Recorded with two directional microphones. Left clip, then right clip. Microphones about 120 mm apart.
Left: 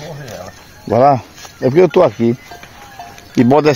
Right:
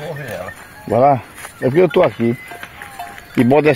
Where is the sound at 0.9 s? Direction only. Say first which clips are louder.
Left 2 dB; 45° left (ahead or behind).